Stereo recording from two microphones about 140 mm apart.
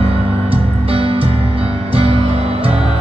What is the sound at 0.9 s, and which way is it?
Music, 40° right (ahead or behind).